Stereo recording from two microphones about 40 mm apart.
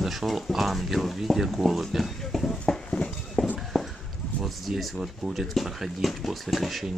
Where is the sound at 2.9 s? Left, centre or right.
Centre.